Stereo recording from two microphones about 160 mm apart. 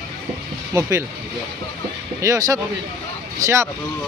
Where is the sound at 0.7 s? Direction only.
20° right (ahead or behind).